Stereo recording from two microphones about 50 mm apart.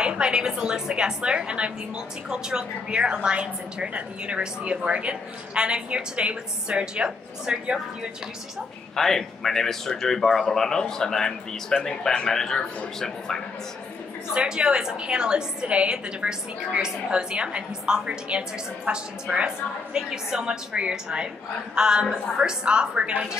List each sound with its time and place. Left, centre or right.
0.0 s a woman's voice: centre
8.9 s speech: centre
14.3 s a woman's voice: centre